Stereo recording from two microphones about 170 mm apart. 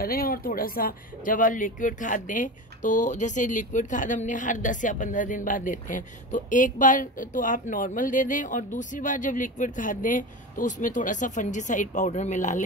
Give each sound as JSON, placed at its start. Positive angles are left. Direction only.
{"t": 0.0, "sound": "speech", "side_deg": 60}